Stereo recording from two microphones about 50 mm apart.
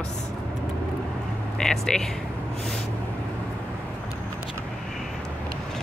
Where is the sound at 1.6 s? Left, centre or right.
Centre.